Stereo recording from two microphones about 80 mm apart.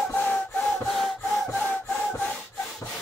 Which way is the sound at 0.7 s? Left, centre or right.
Centre.